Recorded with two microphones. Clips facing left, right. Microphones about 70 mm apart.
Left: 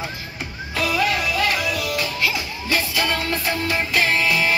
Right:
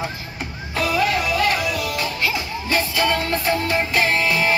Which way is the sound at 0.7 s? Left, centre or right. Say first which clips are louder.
Right 1 dB; right.